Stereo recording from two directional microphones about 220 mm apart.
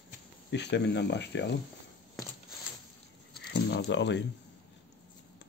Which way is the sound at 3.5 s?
50° left (ahead or behind).